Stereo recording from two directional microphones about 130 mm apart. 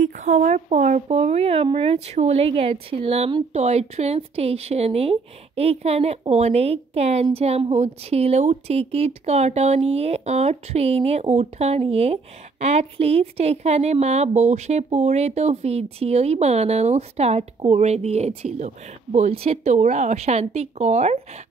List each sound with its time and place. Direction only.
0.0 s speech: 75° right (ahead or behind)